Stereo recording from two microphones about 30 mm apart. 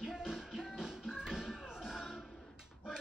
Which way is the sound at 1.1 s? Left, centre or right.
Right.